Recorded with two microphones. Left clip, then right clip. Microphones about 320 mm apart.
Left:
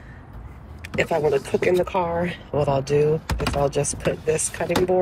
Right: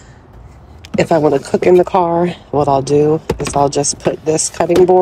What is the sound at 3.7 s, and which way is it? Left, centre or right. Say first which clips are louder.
Speech: right 8 dB; right.